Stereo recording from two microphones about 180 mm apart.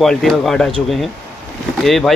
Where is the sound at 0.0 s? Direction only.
Centre (ahead or behind).